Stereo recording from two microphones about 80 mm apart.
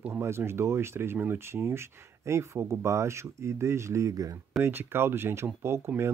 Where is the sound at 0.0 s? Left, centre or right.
Right.